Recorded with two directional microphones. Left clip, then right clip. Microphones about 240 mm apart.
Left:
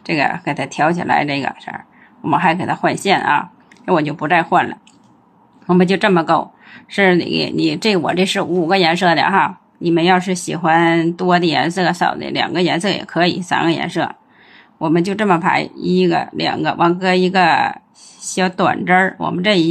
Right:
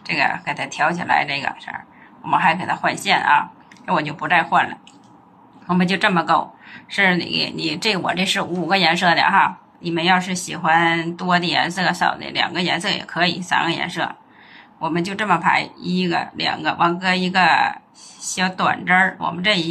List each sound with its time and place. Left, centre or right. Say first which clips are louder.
0.0 s speech: left 2 dB; left